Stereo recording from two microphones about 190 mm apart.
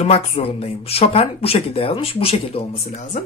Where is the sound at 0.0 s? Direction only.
30° left (ahead or behind).